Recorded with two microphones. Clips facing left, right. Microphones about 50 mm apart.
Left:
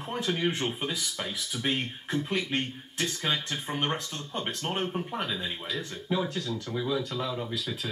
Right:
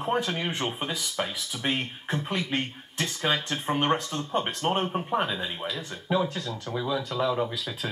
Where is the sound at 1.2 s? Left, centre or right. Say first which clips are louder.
Right 9 dB; right.